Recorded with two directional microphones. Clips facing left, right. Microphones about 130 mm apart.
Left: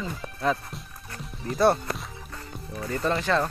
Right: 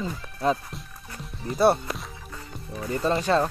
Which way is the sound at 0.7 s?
Centre (ahead or behind).